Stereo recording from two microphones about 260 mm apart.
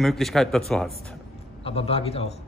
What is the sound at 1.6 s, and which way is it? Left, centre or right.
Speech, left.